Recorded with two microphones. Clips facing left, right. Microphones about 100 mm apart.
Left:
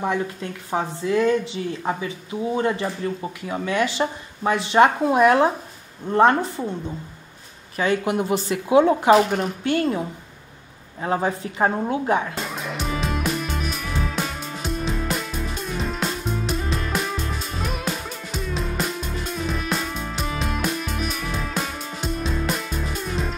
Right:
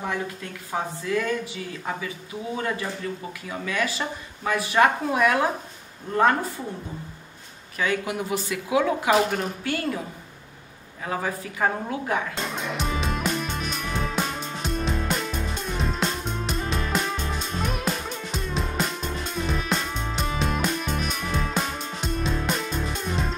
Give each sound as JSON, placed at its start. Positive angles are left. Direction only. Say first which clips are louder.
{"t": 0.0, "sound": "a woman's voice", "louder": "left 5 dB", "side_deg": 25}
{"t": 7.7, "sound": "a woman's voice", "louder": "left 5 dB", "side_deg": 30}
{"t": 12.5, "sound": "music", "louder": "even", "side_deg": 0}